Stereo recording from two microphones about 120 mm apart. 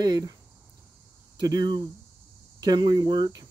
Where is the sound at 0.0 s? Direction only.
30° right (ahead or behind).